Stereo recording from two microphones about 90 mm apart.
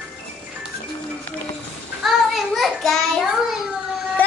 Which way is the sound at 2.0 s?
Centre (ahead or behind).